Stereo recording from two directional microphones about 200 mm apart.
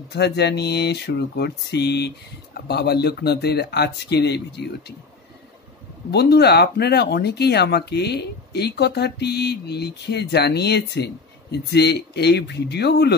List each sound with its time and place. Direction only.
0.1 s speech: 55° left (ahead or behind)
6.1 s speech: 55° left (ahead or behind)